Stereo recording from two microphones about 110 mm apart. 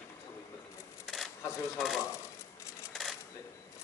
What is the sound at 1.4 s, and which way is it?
Speech, 25° left (ahead or behind).